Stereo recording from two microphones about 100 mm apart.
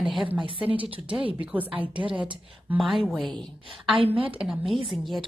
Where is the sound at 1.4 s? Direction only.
15° right (ahead or behind).